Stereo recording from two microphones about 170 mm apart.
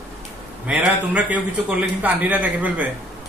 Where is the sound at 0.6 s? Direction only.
5° right (ahead or behind).